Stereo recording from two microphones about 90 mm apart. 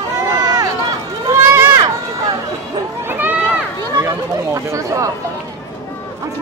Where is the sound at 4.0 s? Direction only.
35° right (ahead or behind).